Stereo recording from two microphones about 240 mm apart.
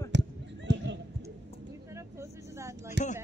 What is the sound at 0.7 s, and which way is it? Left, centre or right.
Basketball bounce, right.